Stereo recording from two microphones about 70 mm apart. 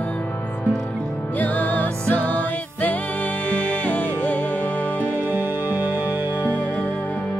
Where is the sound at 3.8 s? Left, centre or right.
Centre.